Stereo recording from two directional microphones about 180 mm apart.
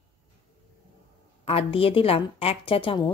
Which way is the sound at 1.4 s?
30° left (ahead or behind).